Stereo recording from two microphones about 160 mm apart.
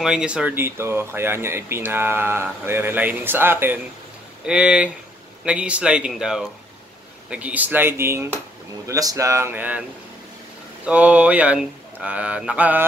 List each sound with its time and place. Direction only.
0.0 s speech: 5° right (ahead or behind)
10.9 s speech: 10° right (ahead or behind)